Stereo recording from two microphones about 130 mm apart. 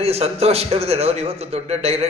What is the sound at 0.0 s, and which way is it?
A man's voice, 50° right (ahead or behind).